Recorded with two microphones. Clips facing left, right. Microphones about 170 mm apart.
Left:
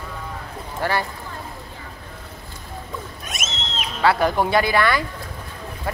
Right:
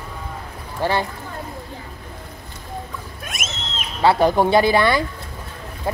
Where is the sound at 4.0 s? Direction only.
25° right (ahead or behind).